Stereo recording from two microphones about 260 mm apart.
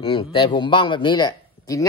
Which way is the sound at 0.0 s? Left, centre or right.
Centre.